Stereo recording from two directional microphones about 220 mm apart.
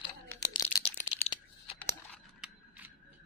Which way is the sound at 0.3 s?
15° left (ahead or behind).